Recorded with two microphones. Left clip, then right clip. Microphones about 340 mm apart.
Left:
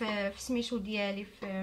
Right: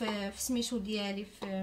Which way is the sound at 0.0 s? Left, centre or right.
Left.